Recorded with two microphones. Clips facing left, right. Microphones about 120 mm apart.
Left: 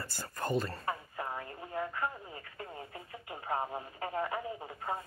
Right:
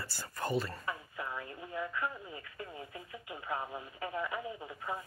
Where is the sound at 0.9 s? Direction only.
40° left (ahead or behind).